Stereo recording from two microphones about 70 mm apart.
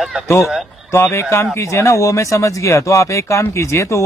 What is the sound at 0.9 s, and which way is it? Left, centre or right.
Speech, left.